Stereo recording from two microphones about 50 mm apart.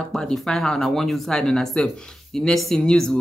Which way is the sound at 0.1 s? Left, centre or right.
Centre.